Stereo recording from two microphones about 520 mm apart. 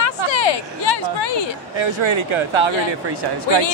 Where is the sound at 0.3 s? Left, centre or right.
Left.